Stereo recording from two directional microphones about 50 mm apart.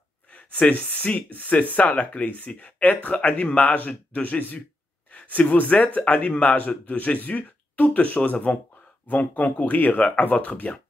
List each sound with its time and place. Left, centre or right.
0.3 s speech: left